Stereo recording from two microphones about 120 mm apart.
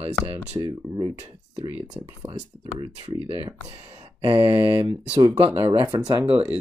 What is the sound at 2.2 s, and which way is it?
Speech, 35° right (ahead or behind).